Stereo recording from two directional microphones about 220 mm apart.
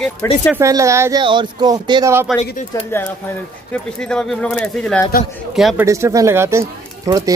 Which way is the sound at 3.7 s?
5° left (ahead or behind).